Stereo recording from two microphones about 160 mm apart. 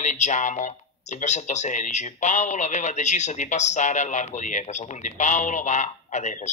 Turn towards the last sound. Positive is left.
turn(degrees=50)  # may be behind; listen again after turning